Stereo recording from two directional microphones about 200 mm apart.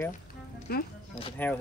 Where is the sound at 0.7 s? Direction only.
50° left (ahead or behind).